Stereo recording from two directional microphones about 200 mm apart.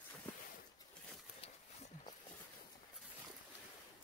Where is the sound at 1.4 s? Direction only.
30° left (ahead or behind).